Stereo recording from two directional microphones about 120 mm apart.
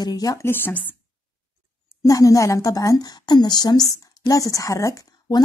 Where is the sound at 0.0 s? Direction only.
30° left (ahead or behind).